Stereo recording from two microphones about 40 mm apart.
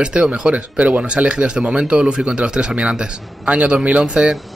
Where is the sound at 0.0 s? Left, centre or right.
Right.